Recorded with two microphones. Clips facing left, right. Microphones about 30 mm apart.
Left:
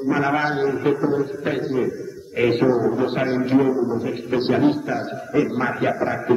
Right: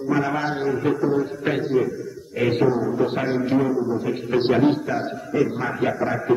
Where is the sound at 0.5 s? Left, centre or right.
Centre.